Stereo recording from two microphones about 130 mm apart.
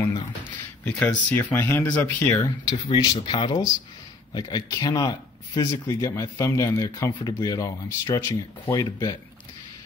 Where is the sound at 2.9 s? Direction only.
40° left (ahead or behind).